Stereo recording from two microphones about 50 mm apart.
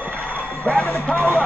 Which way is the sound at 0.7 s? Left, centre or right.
Left.